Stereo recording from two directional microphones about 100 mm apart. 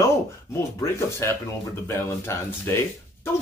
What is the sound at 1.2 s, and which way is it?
Speech, 25° left (ahead or behind).